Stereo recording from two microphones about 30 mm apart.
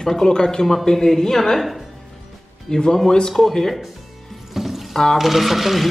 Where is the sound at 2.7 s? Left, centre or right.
Left.